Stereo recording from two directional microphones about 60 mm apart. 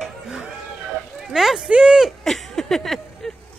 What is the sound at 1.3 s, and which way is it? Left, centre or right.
Speech, centre.